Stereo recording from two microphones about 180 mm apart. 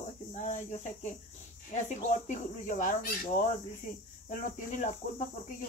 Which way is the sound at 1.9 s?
45° left (ahead or behind).